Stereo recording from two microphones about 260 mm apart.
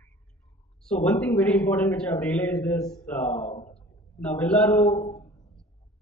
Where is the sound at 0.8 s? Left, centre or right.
Centre.